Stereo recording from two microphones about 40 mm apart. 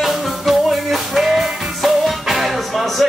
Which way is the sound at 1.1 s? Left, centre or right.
Centre.